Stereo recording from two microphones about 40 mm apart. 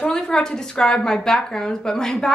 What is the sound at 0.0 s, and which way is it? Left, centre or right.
Speech, centre.